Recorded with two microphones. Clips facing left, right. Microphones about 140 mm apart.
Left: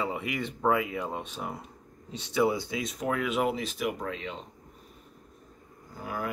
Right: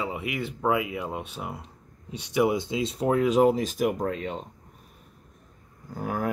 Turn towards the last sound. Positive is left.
turn(degrees=-50)  # may be behind; listen again after turning